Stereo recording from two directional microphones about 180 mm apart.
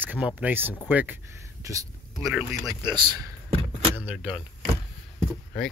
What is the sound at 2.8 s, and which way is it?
Power windows, 25° right (ahead or behind).